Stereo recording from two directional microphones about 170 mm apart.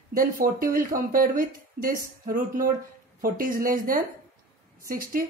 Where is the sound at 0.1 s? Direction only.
55° right (ahead or behind).